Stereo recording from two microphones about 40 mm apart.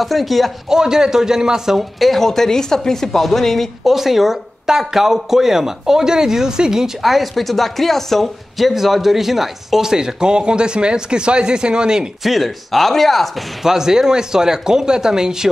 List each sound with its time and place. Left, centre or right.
0.0 s speech: centre
0.7 s speech: centre
1.8 s speech: centre
3.8 s speech: centre
7.0 s speech: centre
8.5 s speech: centre
12.2 s speech: centre
13.6 s speech: centre